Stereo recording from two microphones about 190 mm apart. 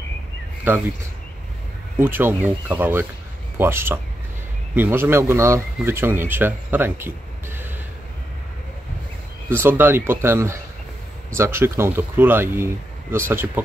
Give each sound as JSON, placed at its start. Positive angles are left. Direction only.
{"t": 0.7, "sound": "speech", "side_deg": -10}
{"t": 2.0, "sound": "speech", "side_deg": -10}
{"t": 9.5, "sound": "speech", "side_deg": -10}